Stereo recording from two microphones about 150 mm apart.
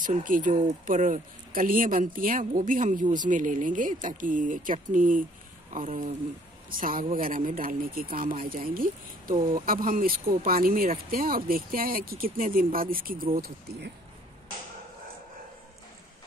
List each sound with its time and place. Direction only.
0.0 s speech: 65° right (ahead or behind)
6.7 s speech: 70° right (ahead or behind)